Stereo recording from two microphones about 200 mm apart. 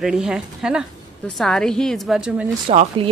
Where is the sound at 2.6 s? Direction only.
25° right (ahead or behind).